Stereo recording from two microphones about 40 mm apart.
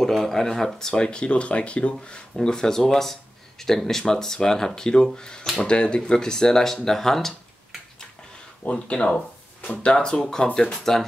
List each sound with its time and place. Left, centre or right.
0.0 s speech: centre
1.0 s speech: left
2.3 s speech: centre
8.6 s speech: left
9.0 s a sound: centre
9.8 s speech: left
10.7 s speech: centre